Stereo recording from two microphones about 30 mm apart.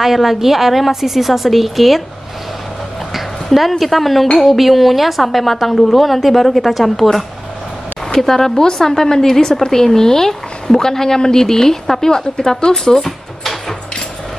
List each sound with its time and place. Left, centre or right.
0.0 s a woman's voice: centre
3.5 s a woman's voice: centre
13.0 s a sound: centre